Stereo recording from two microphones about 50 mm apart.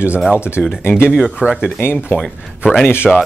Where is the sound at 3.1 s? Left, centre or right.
Centre.